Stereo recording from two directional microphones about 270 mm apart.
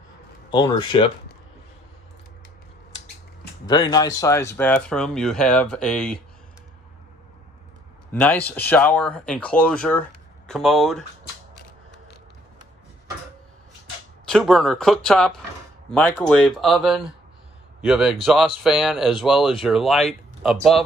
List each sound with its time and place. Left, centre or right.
0.5 s speech: centre
3.6 s speech: centre
8.1 s speech: centre
14.2 s speech: centre